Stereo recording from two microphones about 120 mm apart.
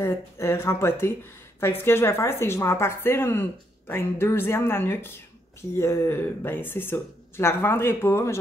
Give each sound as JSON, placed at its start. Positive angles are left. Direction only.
{"t": 0.0, "sound": "a woman's voice", "side_deg": 20}